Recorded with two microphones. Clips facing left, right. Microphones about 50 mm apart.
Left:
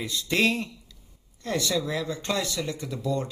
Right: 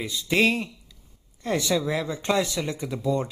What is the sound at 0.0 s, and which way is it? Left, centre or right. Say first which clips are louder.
Speech: right 2 dB; centre.